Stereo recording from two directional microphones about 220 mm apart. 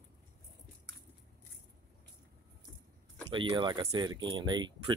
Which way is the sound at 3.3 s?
20° right (ahead or behind).